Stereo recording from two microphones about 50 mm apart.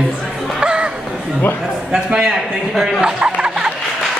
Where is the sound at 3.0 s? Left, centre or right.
Centre.